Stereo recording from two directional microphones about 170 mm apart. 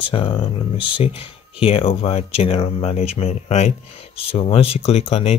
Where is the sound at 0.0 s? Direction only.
30° left (ahead or behind).